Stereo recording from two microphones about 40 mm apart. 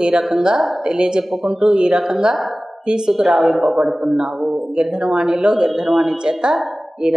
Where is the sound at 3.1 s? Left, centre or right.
Centre.